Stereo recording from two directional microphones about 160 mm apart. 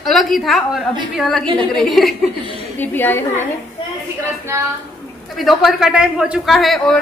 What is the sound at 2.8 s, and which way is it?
Speech, 10° left (ahead or behind).